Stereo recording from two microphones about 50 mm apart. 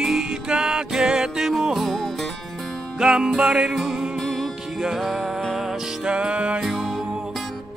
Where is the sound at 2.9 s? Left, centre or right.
Centre.